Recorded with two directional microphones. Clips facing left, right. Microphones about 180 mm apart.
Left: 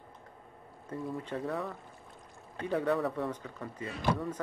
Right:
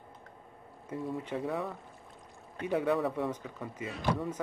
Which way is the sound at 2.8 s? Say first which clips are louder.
Even; centre (ahead or behind).